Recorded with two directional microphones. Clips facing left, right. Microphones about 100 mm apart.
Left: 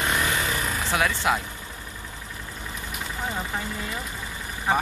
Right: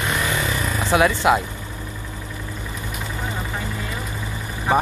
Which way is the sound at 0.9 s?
20° right (ahead or behind).